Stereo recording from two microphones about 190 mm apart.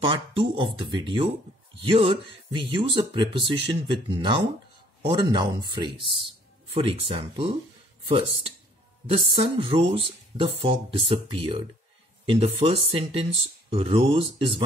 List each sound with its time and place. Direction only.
0.0 s speech: 25° right (ahead or behind)
9.3 s speech: 30° right (ahead or behind)